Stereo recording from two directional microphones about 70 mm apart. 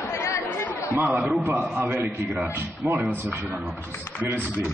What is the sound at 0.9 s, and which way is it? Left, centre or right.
Speech, right.